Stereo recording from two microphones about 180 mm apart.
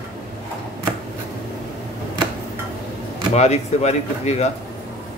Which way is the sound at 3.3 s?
35° left (ahead or behind).